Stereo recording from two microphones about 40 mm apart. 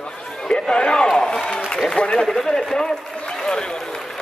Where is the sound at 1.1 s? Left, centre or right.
Centre.